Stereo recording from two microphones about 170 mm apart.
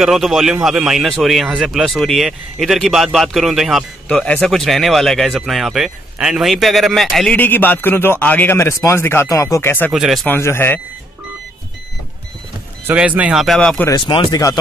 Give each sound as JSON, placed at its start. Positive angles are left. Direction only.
{"t": 0.0, "sound": "speech", "side_deg": 0}
{"t": 9.9, "sound": "speech", "side_deg": 0}
{"t": 10.2, "sound": "a man's voice", "side_deg": 15}
{"t": 12.8, "sound": "speech", "side_deg": -10}
{"t": 13.8, "sound": "speech", "side_deg": 25}